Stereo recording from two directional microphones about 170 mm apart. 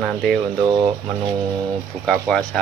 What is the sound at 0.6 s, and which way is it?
Speech, 25° right (ahead or behind).